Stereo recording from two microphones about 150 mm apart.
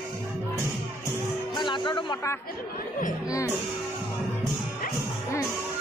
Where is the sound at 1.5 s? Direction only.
30° left (ahead or behind).